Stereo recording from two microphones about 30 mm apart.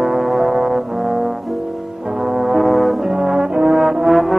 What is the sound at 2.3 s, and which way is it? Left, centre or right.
Brass instrument, centre.